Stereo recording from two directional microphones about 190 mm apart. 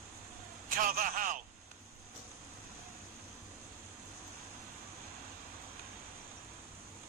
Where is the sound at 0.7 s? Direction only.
45° right (ahead or behind).